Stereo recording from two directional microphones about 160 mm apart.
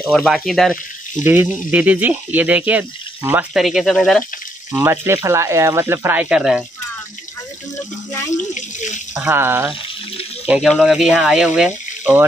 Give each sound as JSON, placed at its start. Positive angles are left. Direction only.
{"t": 0.1, "sound": "speech", "side_deg": 0}
{"t": 1.2, "sound": "speech", "side_deg": -10}
{"t": 4.7, "sound": "speech", "side_deg": -15}
{"t": 8.5, "sound": "water", "side_deg": 50}
{"t": 9.1, "sound": "speech", "side_deg": -10}